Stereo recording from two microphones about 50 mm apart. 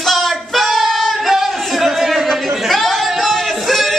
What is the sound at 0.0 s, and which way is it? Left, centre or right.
Singing, centre.